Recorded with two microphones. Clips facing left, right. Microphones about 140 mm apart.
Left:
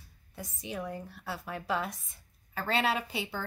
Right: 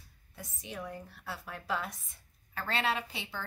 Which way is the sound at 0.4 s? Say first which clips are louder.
Left 4 dB; 5° left (ahead or behind).